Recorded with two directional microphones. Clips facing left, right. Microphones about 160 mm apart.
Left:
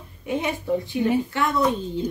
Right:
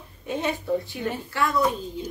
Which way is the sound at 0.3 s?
15° left (ahead or behind).